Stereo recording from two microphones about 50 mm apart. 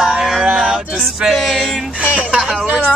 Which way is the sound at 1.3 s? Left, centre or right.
Centre.